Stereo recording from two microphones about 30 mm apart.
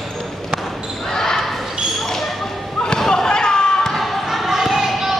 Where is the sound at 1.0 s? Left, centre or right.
Centre.